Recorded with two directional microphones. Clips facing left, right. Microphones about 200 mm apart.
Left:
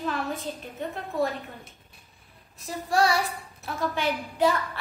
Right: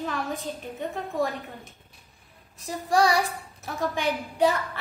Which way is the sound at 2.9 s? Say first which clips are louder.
Right 2 dB; 15° right (ahead or behind).